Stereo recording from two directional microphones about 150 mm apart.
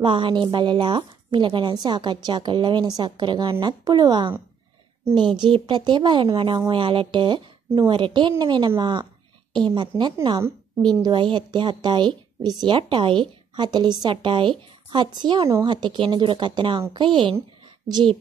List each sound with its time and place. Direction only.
0.0 s a woman's voice: 35° right (ahead or behind)